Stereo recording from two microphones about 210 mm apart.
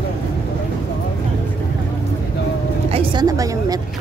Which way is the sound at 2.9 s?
20° right (ahead or behind).